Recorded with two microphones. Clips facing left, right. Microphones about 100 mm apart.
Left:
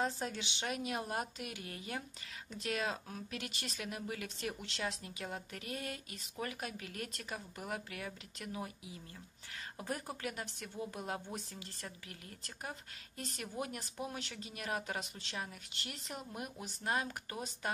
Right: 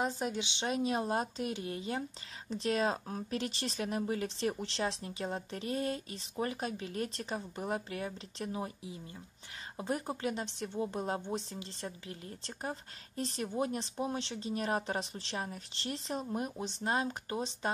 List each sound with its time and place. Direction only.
0.0 s a woman's voice: 15° right (ahead or behind)